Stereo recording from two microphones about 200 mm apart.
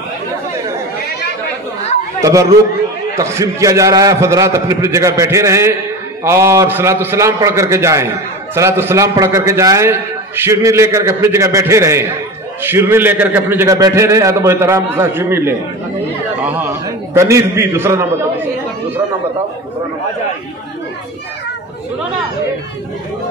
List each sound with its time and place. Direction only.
2.1 s chatter: 15° right (ahead or behind)
3.2 s a man's voice: 15° right (ahead or behind)